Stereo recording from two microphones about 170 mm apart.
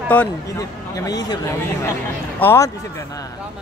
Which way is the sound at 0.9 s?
20° left (ahead or behind).